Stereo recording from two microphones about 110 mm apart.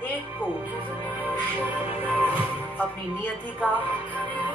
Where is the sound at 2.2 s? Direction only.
15° left (ahead or behind).